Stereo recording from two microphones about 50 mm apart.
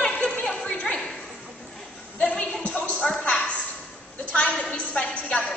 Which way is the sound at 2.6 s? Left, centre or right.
Left.